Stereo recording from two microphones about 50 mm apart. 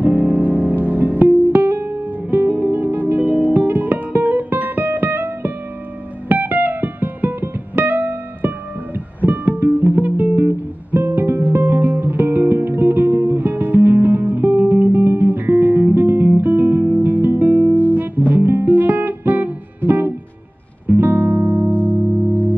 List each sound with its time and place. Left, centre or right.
0.0 s music: right